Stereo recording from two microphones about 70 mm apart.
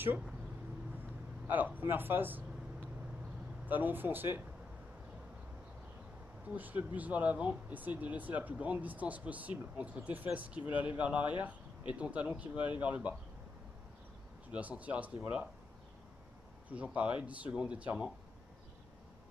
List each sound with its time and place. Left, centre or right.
1.5 s speech: right
3.6 s speech: right
6.5 s speech: right
14.5 s speech: right
16.6 s speech: right